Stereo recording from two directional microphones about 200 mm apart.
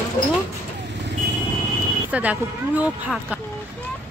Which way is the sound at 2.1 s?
5° right (ahead or behind).